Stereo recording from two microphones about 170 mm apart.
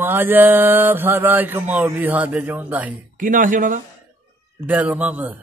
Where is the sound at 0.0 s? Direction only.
10° right (ahead or behind).